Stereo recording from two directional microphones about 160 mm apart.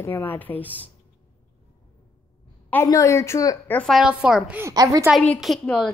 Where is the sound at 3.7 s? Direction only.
5° left (ahead or behind).